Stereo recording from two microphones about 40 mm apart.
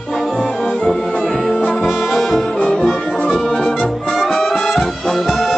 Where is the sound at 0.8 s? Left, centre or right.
Centre.